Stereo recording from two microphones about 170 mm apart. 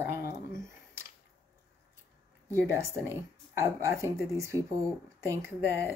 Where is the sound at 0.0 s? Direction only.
15° right (ahead or behind).